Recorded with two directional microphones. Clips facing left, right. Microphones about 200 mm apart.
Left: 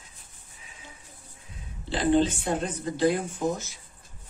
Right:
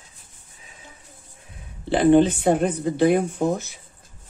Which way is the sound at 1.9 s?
60° right (ahead or behind).